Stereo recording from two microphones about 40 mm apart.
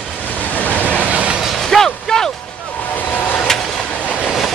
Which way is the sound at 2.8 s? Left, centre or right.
Left.